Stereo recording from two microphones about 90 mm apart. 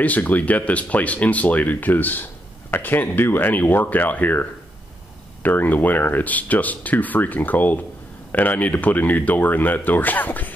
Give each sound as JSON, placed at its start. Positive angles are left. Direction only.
{"t": 0.0, "sound": "speech", "side_deg": 20}